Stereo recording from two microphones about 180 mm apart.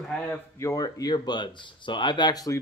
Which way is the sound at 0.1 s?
15° left (ahead or behind).